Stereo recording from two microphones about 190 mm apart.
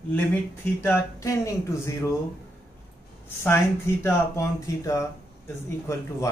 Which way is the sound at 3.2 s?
10° left (ahead or behind).